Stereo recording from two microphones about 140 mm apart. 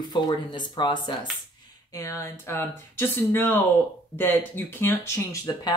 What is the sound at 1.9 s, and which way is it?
Speech, 20° left (ahead or behind).